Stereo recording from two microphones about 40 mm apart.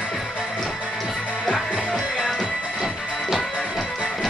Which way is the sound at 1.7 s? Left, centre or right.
Centre.